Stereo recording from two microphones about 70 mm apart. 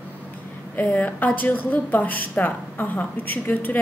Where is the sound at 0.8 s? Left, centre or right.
Left.